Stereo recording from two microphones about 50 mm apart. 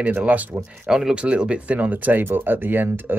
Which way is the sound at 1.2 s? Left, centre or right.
Right.